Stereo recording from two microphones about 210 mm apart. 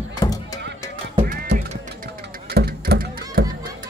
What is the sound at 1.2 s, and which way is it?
Music, 35° right (ahead or behind).